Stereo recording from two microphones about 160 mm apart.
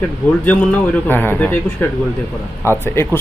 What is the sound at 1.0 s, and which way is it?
Speech, 15° left (ahead or behind).